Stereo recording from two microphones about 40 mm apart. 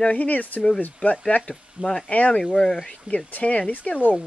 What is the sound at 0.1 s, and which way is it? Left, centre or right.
Speech, left.